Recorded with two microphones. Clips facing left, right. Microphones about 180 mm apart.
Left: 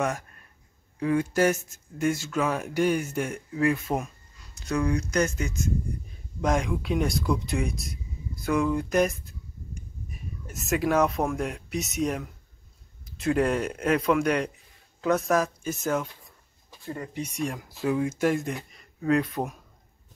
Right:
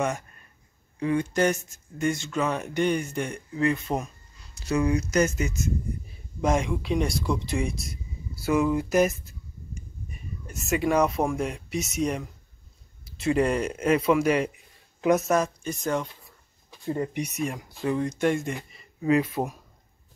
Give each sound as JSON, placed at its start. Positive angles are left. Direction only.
{"t": 0.9, "sound": "speech", "side_deg": 5}
{"t": 15.0, "sound": "speech", "side_deg": -15}
{"t": 15.2, "sound": "speech", "side_deg": 0}
{"t": 16.8, "sound": "speech", "side_deg": -25}
{"t": 17.2, "sound": "speech", "side_deg": -5}